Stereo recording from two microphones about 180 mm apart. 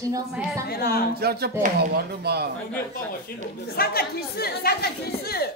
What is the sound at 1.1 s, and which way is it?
Speech, 60° right (ahead or behind).